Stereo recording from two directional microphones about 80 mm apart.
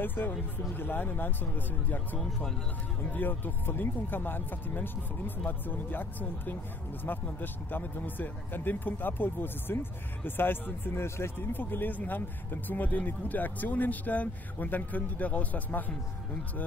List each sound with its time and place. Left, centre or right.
0.0 s speech: left
3.0 s speech: left